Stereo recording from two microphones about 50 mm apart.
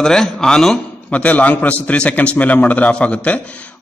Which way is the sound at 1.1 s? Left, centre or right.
Left.